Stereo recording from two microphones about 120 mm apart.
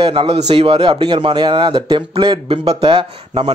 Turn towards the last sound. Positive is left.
turn(degrees=-45)  # may be behind; listen again after turning